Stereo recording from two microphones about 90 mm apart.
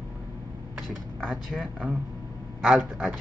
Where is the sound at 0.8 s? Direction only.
5° left (ahead or behind).